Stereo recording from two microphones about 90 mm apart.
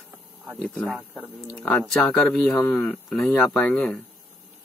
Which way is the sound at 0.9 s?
20° right (ahead or behind).